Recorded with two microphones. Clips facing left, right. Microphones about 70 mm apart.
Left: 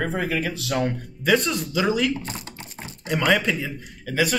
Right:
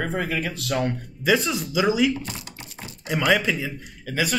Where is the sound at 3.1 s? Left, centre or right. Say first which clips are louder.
Even; centre.